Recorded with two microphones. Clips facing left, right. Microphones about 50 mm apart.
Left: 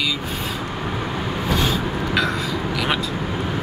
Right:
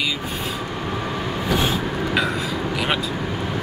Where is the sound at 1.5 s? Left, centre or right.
Centre.